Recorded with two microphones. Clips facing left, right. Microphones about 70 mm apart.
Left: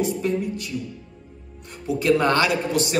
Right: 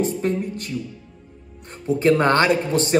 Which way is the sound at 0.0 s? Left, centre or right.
Right.